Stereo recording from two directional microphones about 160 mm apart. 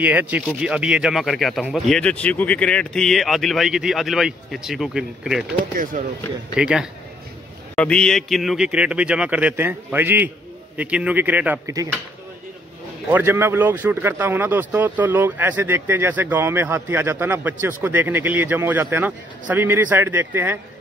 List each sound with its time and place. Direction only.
0.0 s speech: 10° right (ahead or behind)
5.8 s speech: 60° right (ahead or behind)
6.5 s speech: 5° right (ahead or behind)
7.7 s speech: 5° left (ahead or behind); by 11.7 s 10° right (ahead or behind)
13.1 s speech: 10° right (ahead or behind)